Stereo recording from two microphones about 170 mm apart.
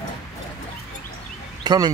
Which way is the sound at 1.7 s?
25° right (ahead or behind).